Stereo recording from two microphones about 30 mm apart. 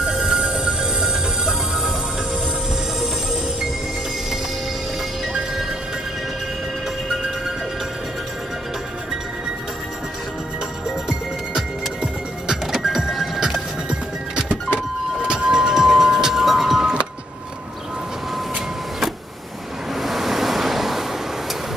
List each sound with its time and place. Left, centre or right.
0.0 s music: centre
11.5 s music: right
13.8 s music: right; by 16.8 s centre
20.0 s waves: centre